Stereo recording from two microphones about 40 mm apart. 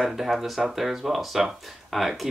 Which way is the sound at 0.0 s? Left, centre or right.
Centre.